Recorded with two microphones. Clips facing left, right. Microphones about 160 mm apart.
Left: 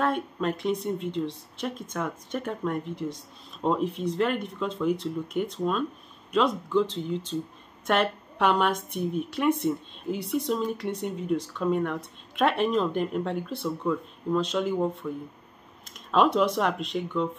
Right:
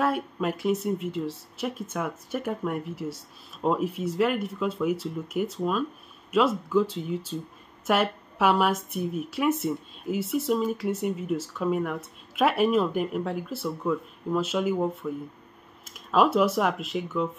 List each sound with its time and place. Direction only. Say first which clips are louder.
0.0 s a woman's voice: even; 5° right (ahead or behind)